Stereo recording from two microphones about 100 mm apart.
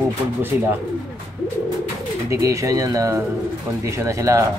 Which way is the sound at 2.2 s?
30° right (ahead or behind).